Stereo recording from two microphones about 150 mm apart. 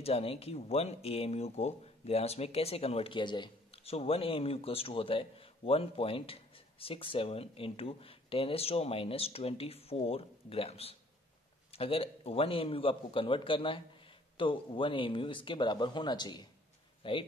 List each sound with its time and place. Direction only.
0.0 s speech: 40° left (ahead or behind)